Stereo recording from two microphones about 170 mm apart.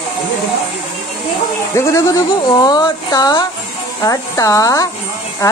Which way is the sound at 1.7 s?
15° left (ahead or behind).